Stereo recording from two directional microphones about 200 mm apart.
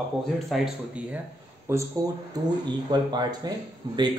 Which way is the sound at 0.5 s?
5° right (ahead or behind).